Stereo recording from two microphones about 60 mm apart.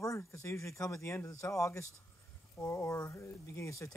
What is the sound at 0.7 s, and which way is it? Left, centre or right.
Speech, left.